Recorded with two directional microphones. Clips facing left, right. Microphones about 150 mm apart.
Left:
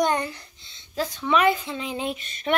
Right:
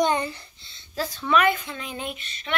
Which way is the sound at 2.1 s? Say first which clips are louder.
Left 10 dB; 45° left (ahead or behind).